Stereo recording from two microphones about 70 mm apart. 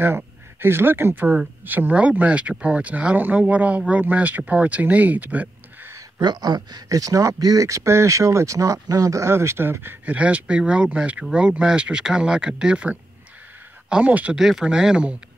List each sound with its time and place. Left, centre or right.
0.0 s speech: right
6.1 s speech: right
10.0 s speech: centre
14.3 s speech: centre